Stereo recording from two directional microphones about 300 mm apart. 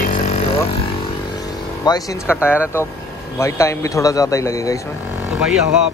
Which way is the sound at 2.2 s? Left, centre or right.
Centre.